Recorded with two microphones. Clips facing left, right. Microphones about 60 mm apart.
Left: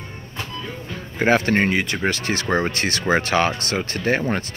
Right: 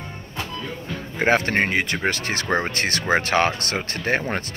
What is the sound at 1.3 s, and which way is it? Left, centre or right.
Speech, right.